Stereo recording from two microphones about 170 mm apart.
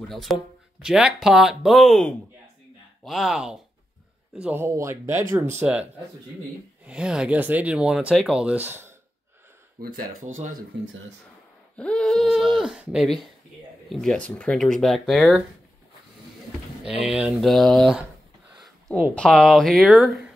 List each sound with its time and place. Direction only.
0.1 s speech: centre (ahead or behind)
6.9 s speech: 5° right (ahead or behind)
9.8 s speech: 55° right (ahead or behind)
11.7 s speech: 5° left (ahead or behind)
16.8 s speech: 5° right (ahead or behind)
19.1 s speech: 5° left (ahead or behind)